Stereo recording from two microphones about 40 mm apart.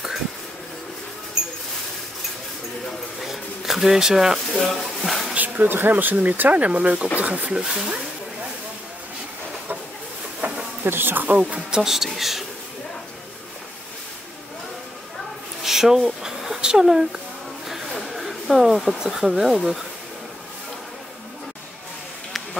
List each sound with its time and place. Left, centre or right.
3.3 s a sound: centre
4.6 s a sound: centre
5.7 s speech: right
7.5 s speech: centre
10.4 s a sound: right
10.8 s speech: right
11.2 s speech: right
11.8 s speech: centre
15.6 s speech: centre